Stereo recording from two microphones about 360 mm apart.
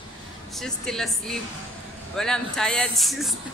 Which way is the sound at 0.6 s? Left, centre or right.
Centre.